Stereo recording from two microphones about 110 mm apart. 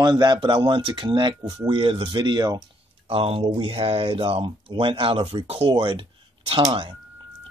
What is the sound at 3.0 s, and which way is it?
Speech, 60° right (ahead or behind).